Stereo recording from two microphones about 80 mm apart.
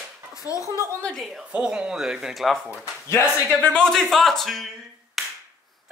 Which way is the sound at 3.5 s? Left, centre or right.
Centre.